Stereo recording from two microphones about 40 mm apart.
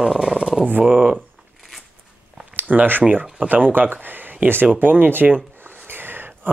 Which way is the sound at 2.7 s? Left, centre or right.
Right.